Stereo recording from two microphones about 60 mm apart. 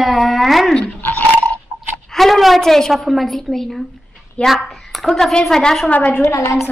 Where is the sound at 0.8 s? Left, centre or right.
Left.